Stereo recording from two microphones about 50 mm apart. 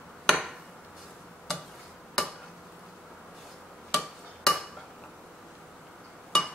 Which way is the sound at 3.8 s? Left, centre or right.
Centre.